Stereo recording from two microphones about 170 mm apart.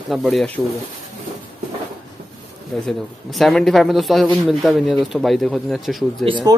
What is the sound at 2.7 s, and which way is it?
Speech, 5° left (ahead or behind).